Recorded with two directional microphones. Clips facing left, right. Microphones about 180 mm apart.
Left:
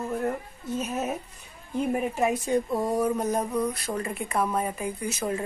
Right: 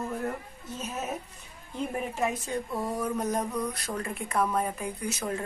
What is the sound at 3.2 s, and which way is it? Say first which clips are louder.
Speech: left 3 dB; 5° left (ahead or behind).